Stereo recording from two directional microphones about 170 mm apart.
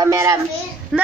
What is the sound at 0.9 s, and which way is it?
Speech, centre (ahead or behind).